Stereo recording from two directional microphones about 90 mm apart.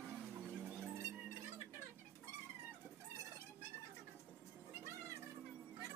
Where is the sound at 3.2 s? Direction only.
35° right (ahead or behind).